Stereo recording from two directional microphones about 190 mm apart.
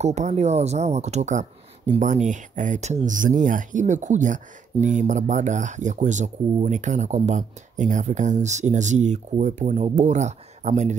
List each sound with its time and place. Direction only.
0.0 s speech: 35° right (ahead or behind)